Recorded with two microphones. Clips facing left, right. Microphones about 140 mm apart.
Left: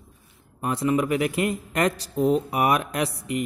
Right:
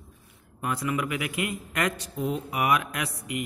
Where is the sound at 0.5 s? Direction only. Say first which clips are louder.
Left 6 dB; 30° left (ahead or behind).